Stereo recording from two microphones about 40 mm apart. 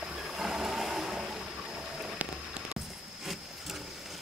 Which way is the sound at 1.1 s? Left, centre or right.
Right.